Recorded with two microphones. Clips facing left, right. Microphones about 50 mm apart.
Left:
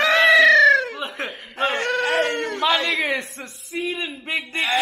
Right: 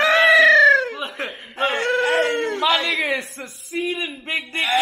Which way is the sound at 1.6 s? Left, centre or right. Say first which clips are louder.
Right 2 dB; right.